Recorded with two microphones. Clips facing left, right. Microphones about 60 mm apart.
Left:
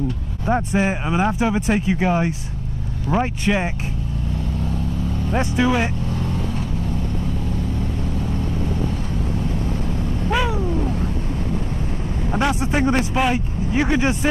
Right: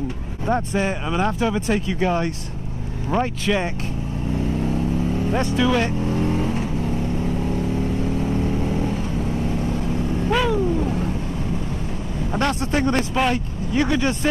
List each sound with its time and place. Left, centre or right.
0.5 s speech: centre
5.3 s speech: centre
6.1 s vehicle: right
10.3 s vehicle: centre
12.3 s speech: centre